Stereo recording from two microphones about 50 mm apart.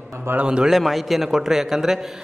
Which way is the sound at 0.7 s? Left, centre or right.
Centre.